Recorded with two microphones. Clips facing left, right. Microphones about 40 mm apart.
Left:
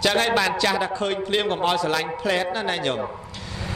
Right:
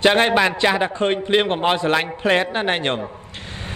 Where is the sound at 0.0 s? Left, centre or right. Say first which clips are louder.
Right 5 dB; right.